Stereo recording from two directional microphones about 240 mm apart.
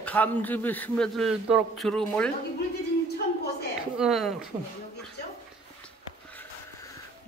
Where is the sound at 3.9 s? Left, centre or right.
Centre.